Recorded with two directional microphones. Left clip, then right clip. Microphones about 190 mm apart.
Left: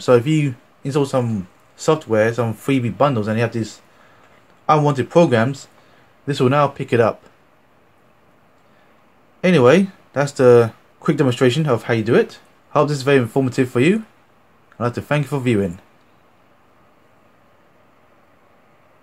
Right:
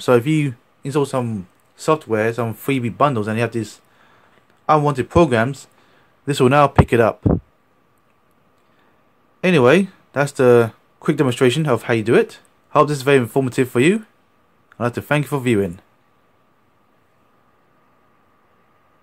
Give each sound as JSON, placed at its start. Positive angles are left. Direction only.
{"t": 0.0, "sound": "speech", "side_deg": -30}
{"t": 9.4, "sound": "speech", "side_deg": -35}